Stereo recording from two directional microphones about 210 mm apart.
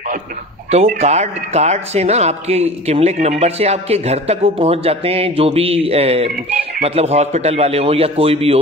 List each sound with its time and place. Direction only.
0.9 s a man's voice: 30° right (ahead or behind)